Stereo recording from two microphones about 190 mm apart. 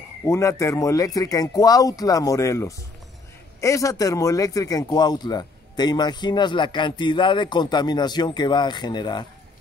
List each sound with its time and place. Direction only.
0.2 s a man's voice: 15° left (ahead or behind)